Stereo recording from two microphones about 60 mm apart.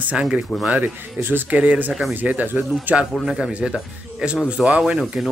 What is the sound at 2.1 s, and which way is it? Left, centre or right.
Speech, right.